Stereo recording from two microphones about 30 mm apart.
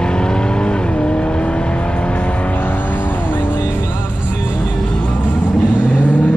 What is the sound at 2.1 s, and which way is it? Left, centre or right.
Vehicle, left.